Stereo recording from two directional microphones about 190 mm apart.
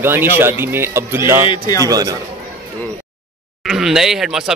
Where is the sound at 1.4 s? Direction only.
20° left (ahead or behind).